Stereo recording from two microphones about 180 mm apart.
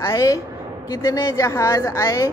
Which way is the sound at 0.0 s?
20° left (ahead or behind).